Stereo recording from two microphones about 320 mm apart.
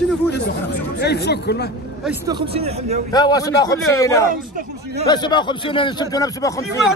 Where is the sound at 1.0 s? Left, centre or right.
Left.